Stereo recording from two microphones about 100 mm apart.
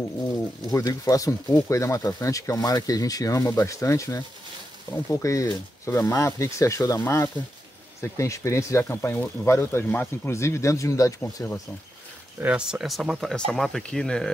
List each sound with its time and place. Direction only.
0.7 s speech: 35° left (ahead or behind)
12.4 s speech: 10° right (ahead or behind); by 14.3 s 5° left (ahead or behind)